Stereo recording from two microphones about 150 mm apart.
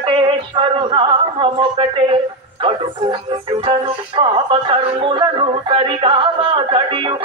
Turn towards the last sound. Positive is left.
turn(degrees=-35)  # may be behind; listen again after turning